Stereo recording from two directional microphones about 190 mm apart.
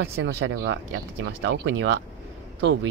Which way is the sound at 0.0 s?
80° right.